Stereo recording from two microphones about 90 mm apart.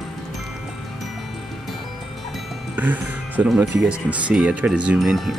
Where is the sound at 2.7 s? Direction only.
15° right (ahead or behind).